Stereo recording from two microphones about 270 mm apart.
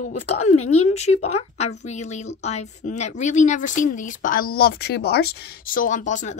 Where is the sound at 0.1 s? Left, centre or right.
Left.